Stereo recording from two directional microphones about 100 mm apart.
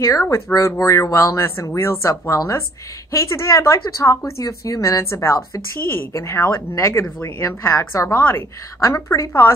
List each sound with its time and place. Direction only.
0.0 s a woman's voice: 30° left (ahead or behind)